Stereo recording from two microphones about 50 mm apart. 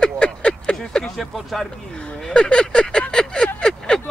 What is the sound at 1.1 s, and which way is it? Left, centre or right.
Speech, centre.